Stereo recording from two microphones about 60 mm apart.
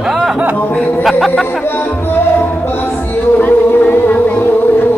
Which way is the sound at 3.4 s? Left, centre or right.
Left.